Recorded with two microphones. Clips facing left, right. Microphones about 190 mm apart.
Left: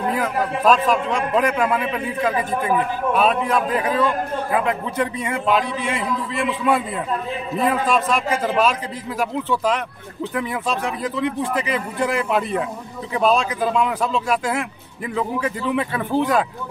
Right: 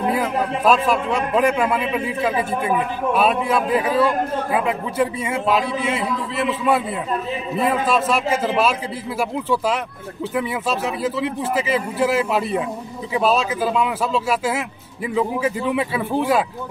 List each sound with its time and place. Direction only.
0.0 s a man's voice: 10° right (ahead or behind)